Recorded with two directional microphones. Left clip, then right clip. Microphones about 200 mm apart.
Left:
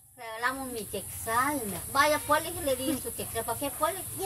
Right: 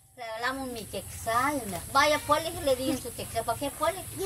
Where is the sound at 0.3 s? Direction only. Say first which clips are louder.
Left 1 dB; 15° right (ahead or behind).